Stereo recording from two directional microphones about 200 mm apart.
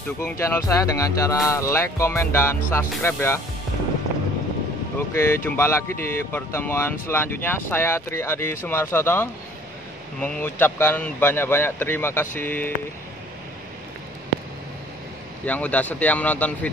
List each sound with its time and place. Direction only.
0.2 s speech: 15° left (ahead or behind)
5.1 s speech: 10° left (ahead or behind)
15.4 s speech: 5° left (ahead or behind)